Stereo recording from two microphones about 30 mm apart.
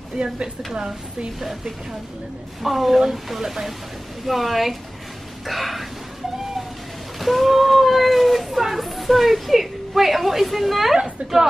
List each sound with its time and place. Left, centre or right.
0.2 s speech: right
2.6 s speech: centre
7.2 s a sound: centre